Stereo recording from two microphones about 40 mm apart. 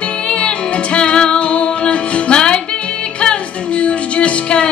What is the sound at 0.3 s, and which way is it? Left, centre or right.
Music, left.